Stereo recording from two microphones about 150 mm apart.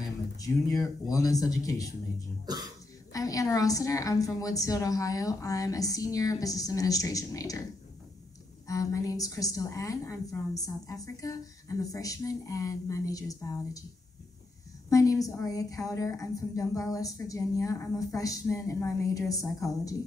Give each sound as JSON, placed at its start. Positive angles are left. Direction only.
{"t": 0.4, "sound": "a woman's voice", "side_deg": 25}
{"t": 2.5, "sound": "cough", "side_deg": -25}
{"t": 3.1, "sound": "a woman's voice", "side_deg": 25}
{"t": 8.6, "sound": "a woman's voice", "side_deg": 25}
{"t": 14.9, "sound": "a woman's voice", "side_deg": 20}